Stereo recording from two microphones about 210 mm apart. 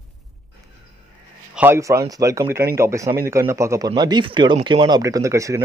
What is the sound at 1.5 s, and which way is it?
Speech, 10° right (ahead or behind).